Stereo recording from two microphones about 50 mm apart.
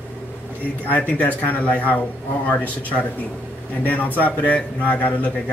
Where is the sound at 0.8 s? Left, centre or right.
Left.